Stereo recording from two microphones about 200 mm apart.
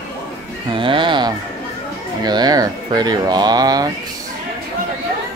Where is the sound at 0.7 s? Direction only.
25° right (ahead or behind).